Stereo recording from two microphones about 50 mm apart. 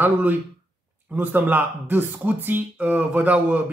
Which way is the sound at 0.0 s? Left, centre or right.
Right.